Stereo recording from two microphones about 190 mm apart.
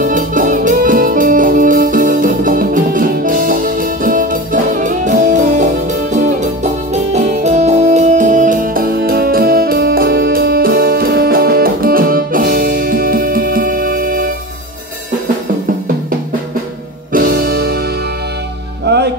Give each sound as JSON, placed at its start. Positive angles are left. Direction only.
{"t": 0.0, "sound": "music", "side_deg": -45}
{"t": 17.1, "sound": "music", "side_deg": -50}